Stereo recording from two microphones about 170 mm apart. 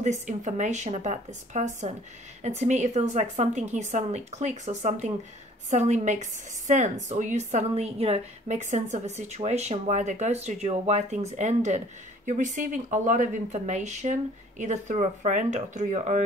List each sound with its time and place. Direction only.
0.0 s a woman's voice: 45° right (ahead or behind)